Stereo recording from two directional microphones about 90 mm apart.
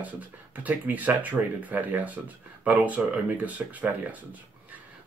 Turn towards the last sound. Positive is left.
turn(degrees=-15)  # may be behind; listen again after turning